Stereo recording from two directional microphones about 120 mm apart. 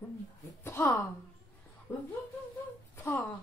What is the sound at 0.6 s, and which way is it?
Speech, 20° left (ahead or behind).